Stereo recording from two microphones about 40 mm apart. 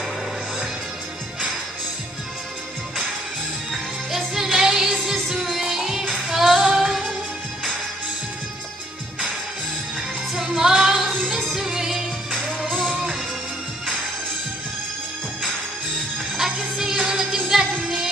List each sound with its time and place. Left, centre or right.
3.7 s music: centre
10.3 s music: centre
12.3 s music: centre
12.9 s music: centre
16.3 s music: centre